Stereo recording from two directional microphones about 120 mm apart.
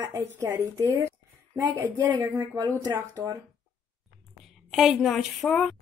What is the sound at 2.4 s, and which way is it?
Speech, 35° right (ahead or behind).